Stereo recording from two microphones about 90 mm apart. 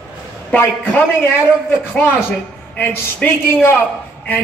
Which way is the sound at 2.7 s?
25° left (ahead or behind).